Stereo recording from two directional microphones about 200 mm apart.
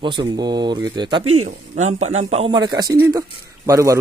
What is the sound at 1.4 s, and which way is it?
A man's voice, 35° right (ahead or behind).